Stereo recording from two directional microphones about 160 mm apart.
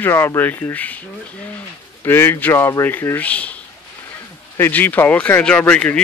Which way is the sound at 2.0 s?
15° left (ahead or behind).